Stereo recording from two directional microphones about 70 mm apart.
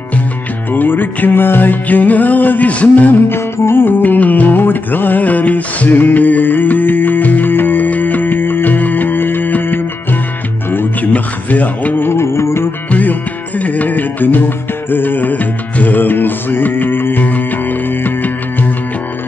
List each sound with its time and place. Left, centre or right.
0.7 s music: left
3.5 s music: left
12.9 s music: left